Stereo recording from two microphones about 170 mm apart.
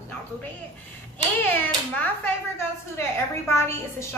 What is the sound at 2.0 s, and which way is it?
Speech, 15° left (ahead or behind).